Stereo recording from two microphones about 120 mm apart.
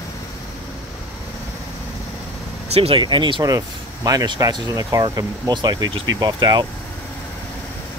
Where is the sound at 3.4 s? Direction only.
30° right (ahead or behind).